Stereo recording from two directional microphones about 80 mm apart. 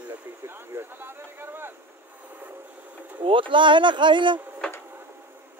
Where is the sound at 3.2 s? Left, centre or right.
Right.